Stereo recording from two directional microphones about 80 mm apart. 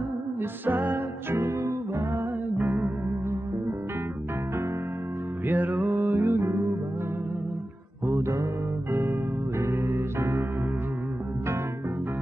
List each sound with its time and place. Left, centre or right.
0.4 s music: right
2.5 s music: right
5.5 s music: right
8.1 s music: right
9.6 s music: right